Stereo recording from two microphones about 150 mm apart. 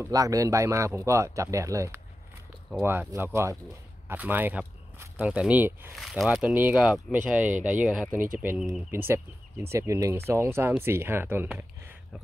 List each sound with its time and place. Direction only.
0.0 s speech: 25° right (ahead or behind)
5.9 s speech: centre (ahead or behind)